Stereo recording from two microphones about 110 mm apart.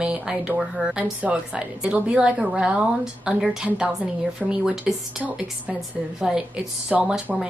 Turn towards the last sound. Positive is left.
turn(degrees=-10)  # may be behind; listen again after turning